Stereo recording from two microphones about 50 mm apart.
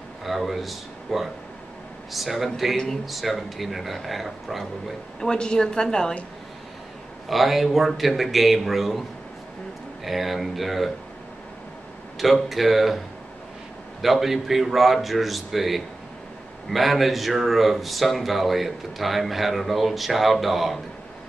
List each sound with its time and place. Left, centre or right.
0.2 s speech: centre
5.2 s a woman's voice: centre
7.2 s speech: centre
10.0 s speech: centre
12.2 s speech: centre
14.0 s speech: centre